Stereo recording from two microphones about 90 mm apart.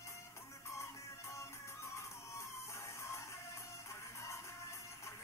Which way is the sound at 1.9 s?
30° left (ahead or behind).